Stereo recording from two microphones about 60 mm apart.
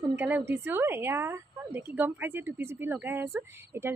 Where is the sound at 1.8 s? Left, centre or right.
Right.